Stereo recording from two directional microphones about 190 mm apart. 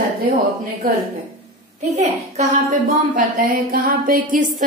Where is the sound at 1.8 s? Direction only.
35° right (ahead or behind).